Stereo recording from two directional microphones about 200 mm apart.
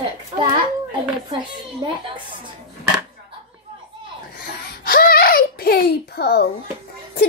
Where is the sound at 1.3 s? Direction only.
25° right (ahead or behind).